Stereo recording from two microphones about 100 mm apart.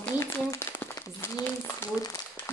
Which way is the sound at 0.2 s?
25° left (ahead or behind).